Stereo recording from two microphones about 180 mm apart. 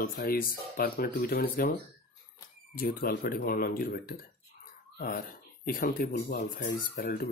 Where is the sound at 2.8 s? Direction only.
55° left (ahead or behind).